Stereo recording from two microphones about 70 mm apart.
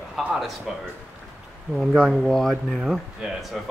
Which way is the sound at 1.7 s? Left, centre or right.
Centre.